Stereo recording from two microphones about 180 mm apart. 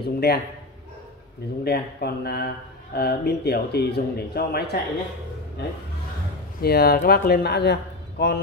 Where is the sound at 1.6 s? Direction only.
65° left (ahead or behind).